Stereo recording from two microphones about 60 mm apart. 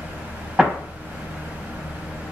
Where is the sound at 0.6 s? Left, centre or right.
Centre.